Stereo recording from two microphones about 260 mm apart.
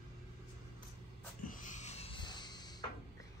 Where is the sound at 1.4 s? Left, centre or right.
Left.